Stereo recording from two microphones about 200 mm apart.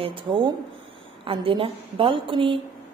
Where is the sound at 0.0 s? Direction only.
25° right (ahead or behind).